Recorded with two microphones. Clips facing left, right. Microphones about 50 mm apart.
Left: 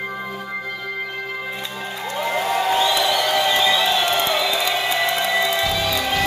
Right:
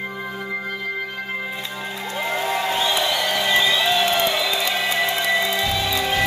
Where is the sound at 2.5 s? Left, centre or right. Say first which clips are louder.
Left 5 dB; centre.